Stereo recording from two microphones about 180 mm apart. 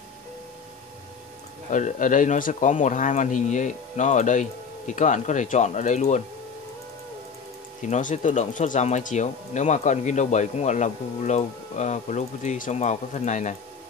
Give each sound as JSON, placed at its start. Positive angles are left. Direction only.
{"t": 1.7, "sound": "speech", "side_deg": 45}
{"t": 7.8, "sound": "speech", "side_deg": 45}